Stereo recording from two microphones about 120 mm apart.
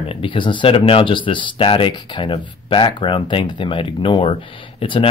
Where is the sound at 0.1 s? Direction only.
45° left (ahead or behind).